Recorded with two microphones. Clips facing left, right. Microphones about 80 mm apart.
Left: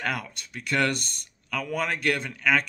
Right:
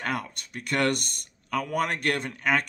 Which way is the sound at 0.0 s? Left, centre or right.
Right.